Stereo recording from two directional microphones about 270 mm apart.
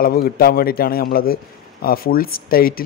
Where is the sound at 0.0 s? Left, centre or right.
Left.